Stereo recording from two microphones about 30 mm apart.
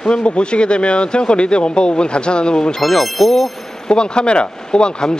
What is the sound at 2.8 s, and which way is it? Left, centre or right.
Speech, centre.